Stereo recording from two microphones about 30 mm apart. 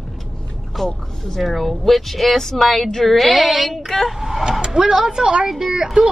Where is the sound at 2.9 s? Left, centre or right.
Centre.